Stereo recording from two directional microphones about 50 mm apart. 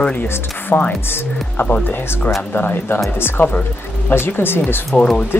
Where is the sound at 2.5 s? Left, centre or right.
Left.